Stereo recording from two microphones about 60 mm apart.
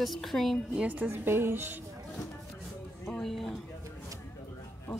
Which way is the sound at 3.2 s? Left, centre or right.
Centre.